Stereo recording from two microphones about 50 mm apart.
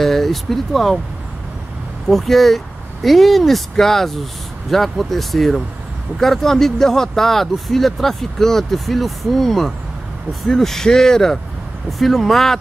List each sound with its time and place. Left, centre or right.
0.0 s speech: centre
2.0 s speech: centre